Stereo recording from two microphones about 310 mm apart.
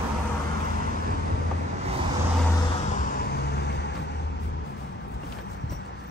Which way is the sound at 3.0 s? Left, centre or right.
Left.